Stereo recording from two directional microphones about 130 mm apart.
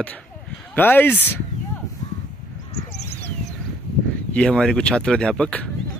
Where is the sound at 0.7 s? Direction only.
15° left (ahead or behind).